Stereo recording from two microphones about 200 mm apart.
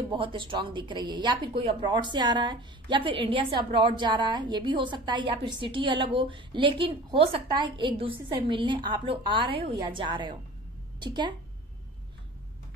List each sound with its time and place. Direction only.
0.1 s speech: 25° right (ahead or behind)